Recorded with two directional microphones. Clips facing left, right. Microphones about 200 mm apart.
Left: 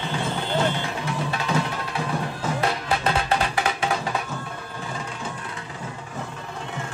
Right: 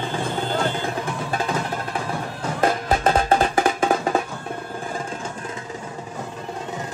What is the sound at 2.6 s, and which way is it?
Music, 45° right (ahead or behind).